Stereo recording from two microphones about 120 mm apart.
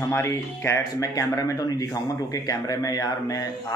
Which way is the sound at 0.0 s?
25° left (ahead or behind).